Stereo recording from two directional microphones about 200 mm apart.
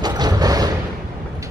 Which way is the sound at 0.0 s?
20° right (ahead or behind).